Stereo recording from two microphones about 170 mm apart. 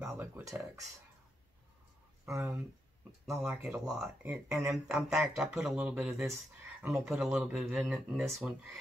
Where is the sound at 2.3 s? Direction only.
15° right (ahead or behind).